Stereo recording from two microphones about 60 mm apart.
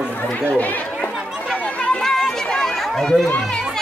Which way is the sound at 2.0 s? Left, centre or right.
Centre.